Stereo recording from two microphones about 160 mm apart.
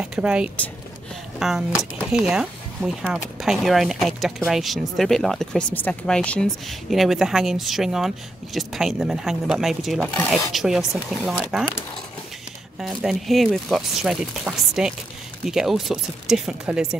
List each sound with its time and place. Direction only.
0.0 s speech: 5° right (ahead or behind)
12.8 s speech: centre (ahead or behind)